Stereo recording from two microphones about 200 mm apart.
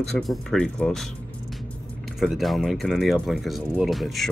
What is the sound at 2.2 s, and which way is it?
Speech, centre (ahead or behind).